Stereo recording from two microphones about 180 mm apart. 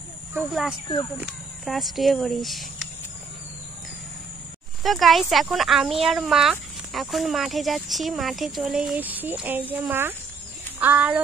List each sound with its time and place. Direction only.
0.4 s speech: centre (ahead or behind)
4.8 s speech: centre (ahead or behind)